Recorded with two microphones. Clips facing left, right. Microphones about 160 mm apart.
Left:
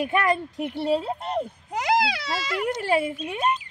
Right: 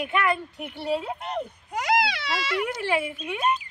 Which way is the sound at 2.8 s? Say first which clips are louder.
Left 3 dB; 40° left (ahead or behind).